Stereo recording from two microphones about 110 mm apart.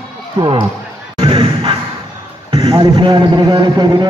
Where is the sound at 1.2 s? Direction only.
55° right (ahead or behind).